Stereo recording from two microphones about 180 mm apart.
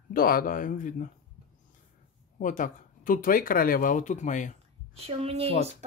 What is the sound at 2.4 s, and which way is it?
Speech, 45° left (ahead or behind).